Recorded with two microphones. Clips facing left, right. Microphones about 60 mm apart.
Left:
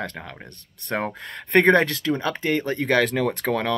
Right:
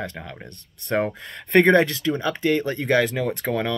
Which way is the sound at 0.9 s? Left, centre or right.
Left.